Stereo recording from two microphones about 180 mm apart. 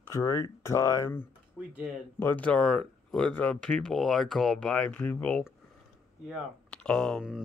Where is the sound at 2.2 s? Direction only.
10° left (ahead or behind).